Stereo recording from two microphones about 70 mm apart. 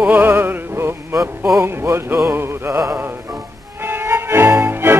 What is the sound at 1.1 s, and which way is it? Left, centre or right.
Speech, right.